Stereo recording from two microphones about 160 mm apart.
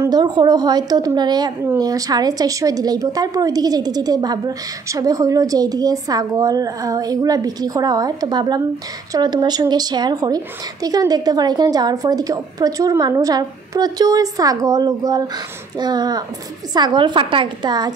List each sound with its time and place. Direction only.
0.0 s a woman's voice: 25° right (ahead or behind)